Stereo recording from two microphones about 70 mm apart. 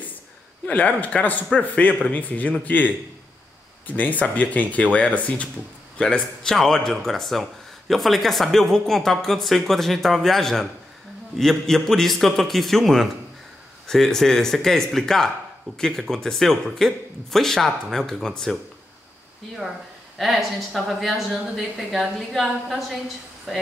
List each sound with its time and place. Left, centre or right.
0.7 s speech: centre
5.9 s speech: centre
20.2 s speech: centre